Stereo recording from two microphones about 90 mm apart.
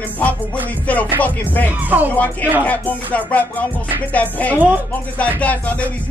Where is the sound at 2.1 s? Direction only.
15° left (ahead or behind).